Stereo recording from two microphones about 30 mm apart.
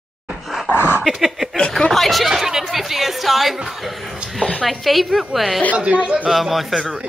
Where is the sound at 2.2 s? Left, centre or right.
Centre.